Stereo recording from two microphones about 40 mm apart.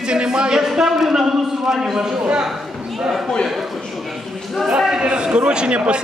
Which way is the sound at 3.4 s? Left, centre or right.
Centre.